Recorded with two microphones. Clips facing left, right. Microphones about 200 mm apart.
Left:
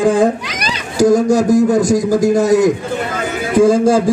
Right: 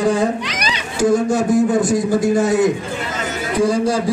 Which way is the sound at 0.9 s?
40° left (ahead or behind).